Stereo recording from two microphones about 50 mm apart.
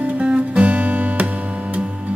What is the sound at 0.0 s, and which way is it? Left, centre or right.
Music, right.